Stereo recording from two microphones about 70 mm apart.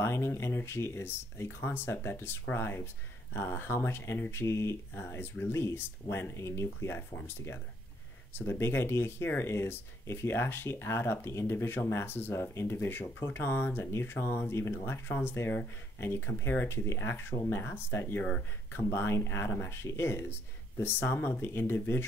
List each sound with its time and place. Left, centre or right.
0.0 s speech: left